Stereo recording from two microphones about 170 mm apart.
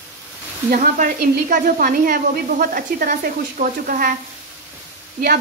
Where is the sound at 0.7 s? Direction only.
55° right (ahead or behind).